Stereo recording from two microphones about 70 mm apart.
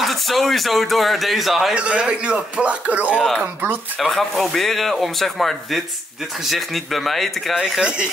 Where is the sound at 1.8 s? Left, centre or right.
Centre.